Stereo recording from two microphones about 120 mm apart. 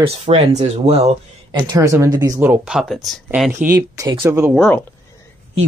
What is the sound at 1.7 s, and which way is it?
Speech, 25° right (ahead or behind).